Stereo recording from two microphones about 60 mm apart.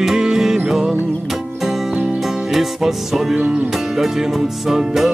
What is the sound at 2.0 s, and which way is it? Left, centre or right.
Music, centre.